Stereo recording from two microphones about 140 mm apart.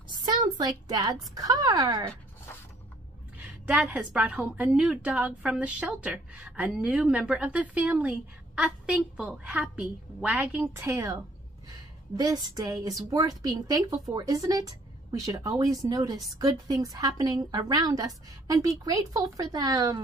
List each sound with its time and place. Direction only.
0.2 s a woman's voice: 30° right (ahead or behind)
3.3 s a woman's voice: 10° right (ahead or behind)
10.7 s a woman's voice: 20° right (ahead or behind)
12.2 s a woman's voice: 25° right (ahead or behind)